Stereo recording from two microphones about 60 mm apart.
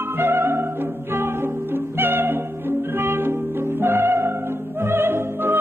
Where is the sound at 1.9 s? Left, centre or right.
Right.